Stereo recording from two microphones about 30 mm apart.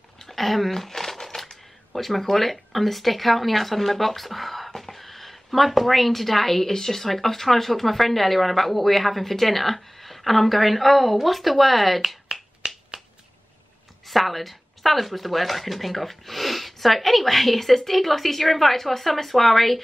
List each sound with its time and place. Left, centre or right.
0.2 s crushing: centre
1.9 s speech: centre
12.3 s finger snapping: centre
14.0 s speech: centre